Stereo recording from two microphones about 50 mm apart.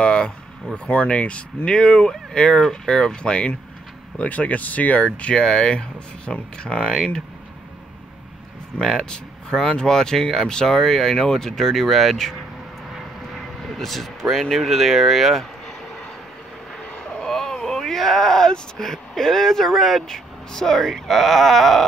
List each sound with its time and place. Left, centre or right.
0.0 s a sound: centre
0.8 s speech: left
8.7 s speech: centre
13.7 s speech: centre
17.0 s speech: centre